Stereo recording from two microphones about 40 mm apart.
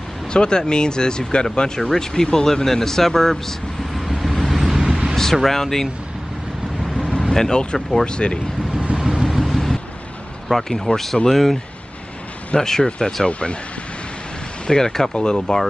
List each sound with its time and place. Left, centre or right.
0.3 s speech: left; by 4.6 s centre
4.6 s vehicle: centre
5.1 s speech: centre
6.8 s vehicle: centre
7.2 s speech: centre
8.9 s vehicle: centre
9.4 s vehicle: centre
10.5 s speech: centre
12.5 s speech: centre
13.3 s speech: left
14.7 s speech: centre